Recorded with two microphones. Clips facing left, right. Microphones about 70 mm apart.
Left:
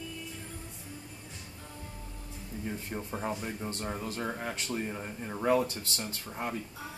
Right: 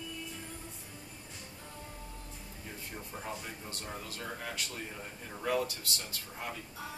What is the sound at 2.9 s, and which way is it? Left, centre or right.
Speech, left.